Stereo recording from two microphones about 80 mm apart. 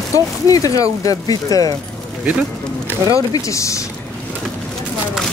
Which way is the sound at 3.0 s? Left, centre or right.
Left.